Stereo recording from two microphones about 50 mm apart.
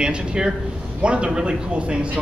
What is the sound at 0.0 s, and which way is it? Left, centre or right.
A man's voice, centre.